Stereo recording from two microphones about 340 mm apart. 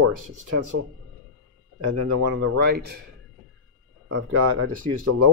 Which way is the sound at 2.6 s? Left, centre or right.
Right.